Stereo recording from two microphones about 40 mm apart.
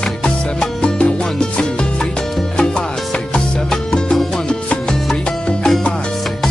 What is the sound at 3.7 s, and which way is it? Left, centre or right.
Music, centre.